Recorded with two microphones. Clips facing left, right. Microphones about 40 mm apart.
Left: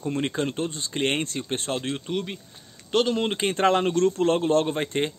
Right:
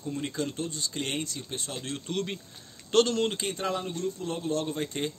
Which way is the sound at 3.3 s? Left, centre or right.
Left.